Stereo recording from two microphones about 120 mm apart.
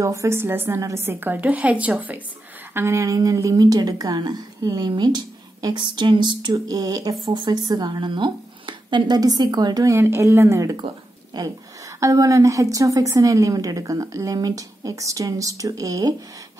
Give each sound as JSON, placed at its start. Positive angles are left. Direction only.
{"t": 0.0, "sound": "a woman's voice", "side_deg": -25}
{"t": 7.2, "sound": "a woman's voice", "side_deg": -40}
{"t": 11.3, "sound": "a woman's voice", "side_deg": -35}